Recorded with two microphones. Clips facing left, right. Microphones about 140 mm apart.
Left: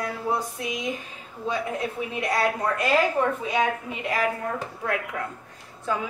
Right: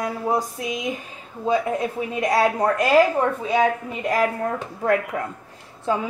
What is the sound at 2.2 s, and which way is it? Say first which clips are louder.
A woman's voice: right 6 dB; 40° right (ahead or behind).